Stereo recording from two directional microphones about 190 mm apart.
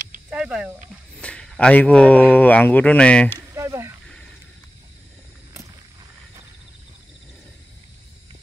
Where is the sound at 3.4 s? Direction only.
15° right (ahead or behind).